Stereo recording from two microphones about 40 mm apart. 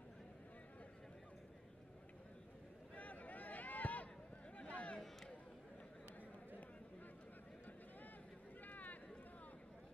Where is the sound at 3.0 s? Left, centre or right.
Left.